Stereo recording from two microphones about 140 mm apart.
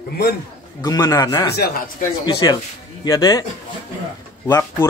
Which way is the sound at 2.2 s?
30° left (ahead or behind).